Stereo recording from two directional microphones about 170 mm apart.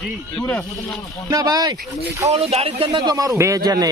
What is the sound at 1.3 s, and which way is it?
Speech, 25° right (ahead or behind).